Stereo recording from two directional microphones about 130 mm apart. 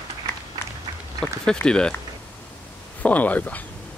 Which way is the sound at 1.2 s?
5° left (ahead or behind).